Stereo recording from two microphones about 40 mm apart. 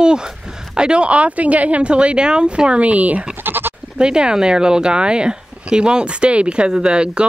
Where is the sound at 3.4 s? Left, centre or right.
Right.